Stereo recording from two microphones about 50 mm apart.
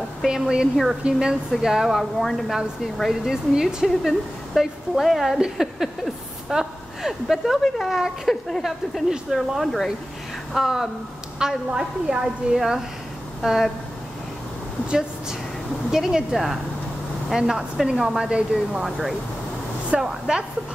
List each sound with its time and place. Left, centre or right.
0.2 s a woman's voice: centre
1.6 s a woman's voice: centre
14.9 s a woman's voice: centre
18.9 s a woman's voice: centre